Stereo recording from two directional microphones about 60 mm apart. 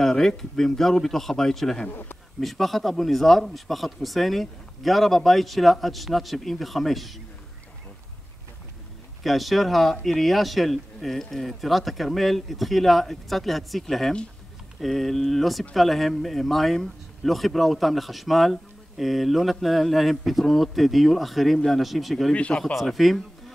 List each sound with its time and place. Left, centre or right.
0.0 s speech: centre
1.9 s speech: left
2.4 s speech: centre
9.2 s speech: centre
22.3 s speech: centre
22.6 s speech: centre